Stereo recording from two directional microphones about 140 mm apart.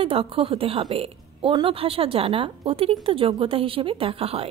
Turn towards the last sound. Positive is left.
turn(degrees=-45)  # may be behind; listen again after turning